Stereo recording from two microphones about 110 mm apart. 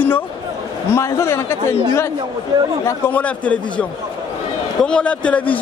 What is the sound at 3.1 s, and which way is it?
Speech, 15° left (ahead or behind).